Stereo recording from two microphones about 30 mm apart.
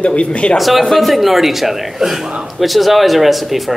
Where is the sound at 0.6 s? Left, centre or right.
Centre.